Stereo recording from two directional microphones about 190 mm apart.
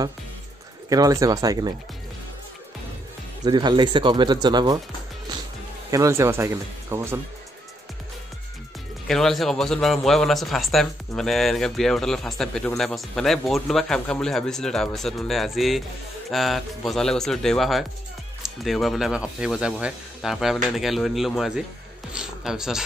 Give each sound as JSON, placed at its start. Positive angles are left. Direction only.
{"t": 0.8, "sound": "speech", "side_deg": -20}
{"t": 3.4, "sound": "speech", "side_deg": -25}
{"t": 5.9, "sound": "speech", "side_deg": -15}
{"t": 9.0, "sound": "a man's voice", "side_deg": 0}